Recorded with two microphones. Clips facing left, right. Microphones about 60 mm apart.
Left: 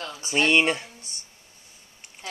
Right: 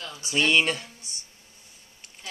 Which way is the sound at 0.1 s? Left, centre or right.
Left.